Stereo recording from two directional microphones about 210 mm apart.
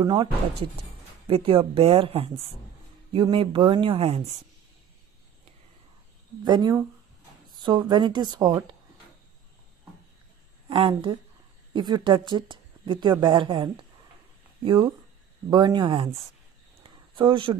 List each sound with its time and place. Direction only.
0.0 s a woman's voice: 25° right (ahead or behind)
6.4 s a woman's voice: 20° right (ahead or behind)
10.7 s a woman's voice: 25° right (ahead or behind)
16.8 s a sound: 25° right (ahead or behind)